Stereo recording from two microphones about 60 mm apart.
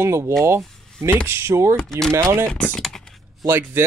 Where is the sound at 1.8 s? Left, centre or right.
Centre.